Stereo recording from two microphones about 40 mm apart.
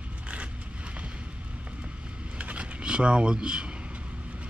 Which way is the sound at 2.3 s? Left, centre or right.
Right.